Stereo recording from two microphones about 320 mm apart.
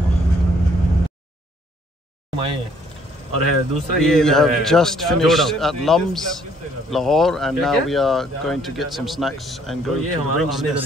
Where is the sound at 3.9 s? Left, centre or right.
Centre.